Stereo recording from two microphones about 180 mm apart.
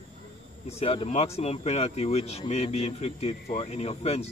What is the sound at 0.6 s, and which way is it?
Speech, 35° left (ahead or behind).